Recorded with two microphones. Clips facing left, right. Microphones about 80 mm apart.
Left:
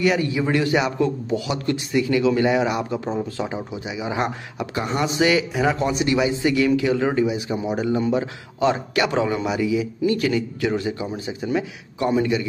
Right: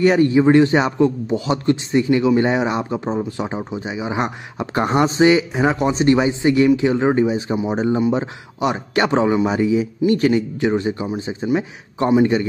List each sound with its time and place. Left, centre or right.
0.0 s a man's voice: right
4.7 s a man's voice: right
8.9 s a man's voice: right
9.5 s a man's voice: right